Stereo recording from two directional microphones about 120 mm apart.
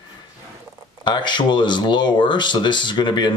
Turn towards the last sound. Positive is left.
turn(degrees=40)  # may be behind; listen again after turning